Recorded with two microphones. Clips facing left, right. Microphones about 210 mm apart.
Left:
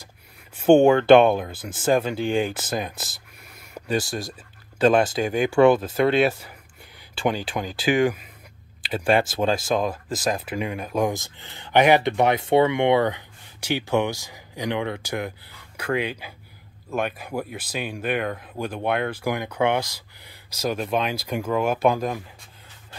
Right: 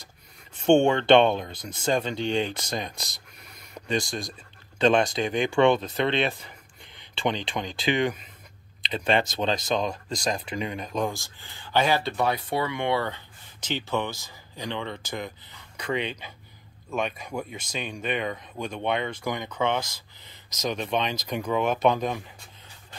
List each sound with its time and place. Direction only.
0.6 s speech: 5° left (ahead or behind)